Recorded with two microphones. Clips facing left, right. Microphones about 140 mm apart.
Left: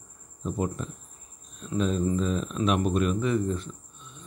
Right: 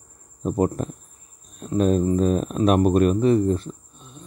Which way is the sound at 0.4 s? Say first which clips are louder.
Right 8 dB; 45° right (ahead or behind).